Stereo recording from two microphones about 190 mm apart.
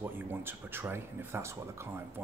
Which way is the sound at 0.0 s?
10° right (ahead or behind).